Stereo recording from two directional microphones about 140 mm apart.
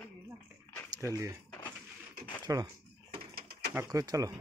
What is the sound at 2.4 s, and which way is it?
Speech, 30° right (ahead or behind).